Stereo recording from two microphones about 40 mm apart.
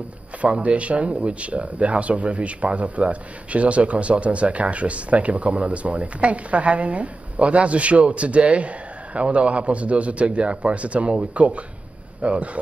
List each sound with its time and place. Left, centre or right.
0.4 s speech: right